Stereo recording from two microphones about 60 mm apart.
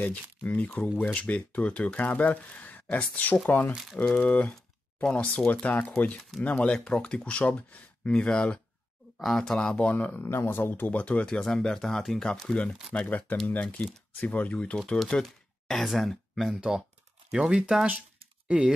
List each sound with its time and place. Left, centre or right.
0.0 s speech: left
3.9 s speech: centre
9.8 s speech: left
10.2 s speech: left
11.2 s speech: centre